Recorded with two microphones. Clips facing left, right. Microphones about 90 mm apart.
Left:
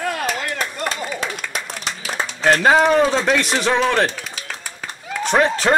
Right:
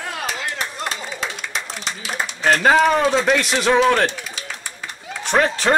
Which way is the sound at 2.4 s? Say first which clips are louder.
Left 1 dB; centre (ahead or behind).